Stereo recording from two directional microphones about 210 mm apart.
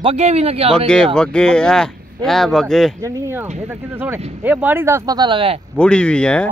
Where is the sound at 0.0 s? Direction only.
30° right (ahead or behind).